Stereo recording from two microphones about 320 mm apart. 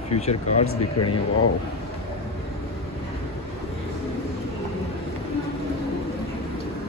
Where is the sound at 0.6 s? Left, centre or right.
Left.